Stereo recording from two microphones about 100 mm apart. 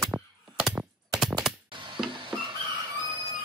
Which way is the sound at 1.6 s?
55° right (ahead or behind).